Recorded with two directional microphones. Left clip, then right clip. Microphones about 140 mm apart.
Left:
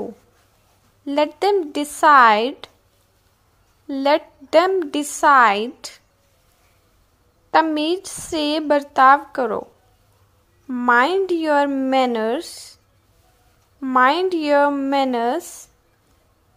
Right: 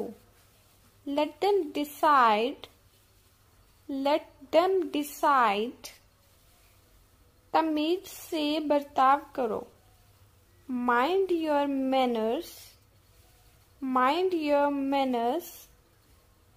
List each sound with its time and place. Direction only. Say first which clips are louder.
1.0 s a woman's voice: left 9 dB; 25° left (ahead or behind)
3.8 s a woman's voice: left 9 dB; 25° left (ahead or behind)
7.5 s a woman's voice: left 9 dB; 20° left (ahead or behind)
10.9 s a woman's voice: left 9 dB; 20° left (ahead or behind)
13.9 s a woman's voice: left 9 dB; 25° left (ahead or behind)